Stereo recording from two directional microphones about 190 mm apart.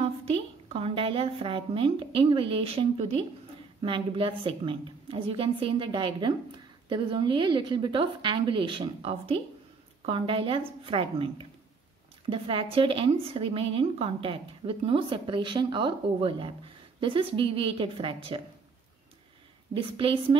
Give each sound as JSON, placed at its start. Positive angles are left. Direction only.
{"t": 0.0, "sound": "a woman's voice", "side_deg": -30}
{"t": 12.3, "sound": "a woman's voice", "side_deg": -25}
{"t": 19.7, "sound": "a woman's voice", "side_deg": -25}